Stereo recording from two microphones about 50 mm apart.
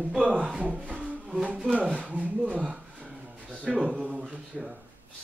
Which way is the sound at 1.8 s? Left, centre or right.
Right.